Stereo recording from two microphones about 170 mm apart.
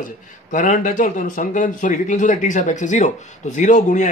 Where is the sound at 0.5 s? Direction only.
50° left (ahead or behind).